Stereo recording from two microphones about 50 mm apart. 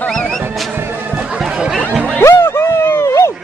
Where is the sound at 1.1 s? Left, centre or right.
Centre.